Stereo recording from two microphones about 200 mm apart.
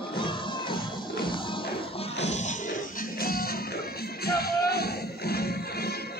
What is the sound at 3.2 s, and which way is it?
Music, 45° left (ahead or behind).